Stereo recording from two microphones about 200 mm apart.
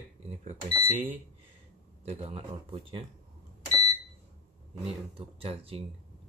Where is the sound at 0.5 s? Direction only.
30° right (ahead or behind).